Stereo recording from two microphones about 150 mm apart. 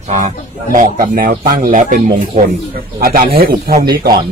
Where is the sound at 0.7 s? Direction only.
60° right (ahead or behind).